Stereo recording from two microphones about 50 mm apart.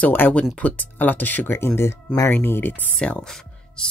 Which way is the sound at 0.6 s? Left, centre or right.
Left.